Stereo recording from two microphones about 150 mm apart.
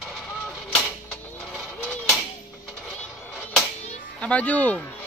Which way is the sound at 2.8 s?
5° left (ahead or behind).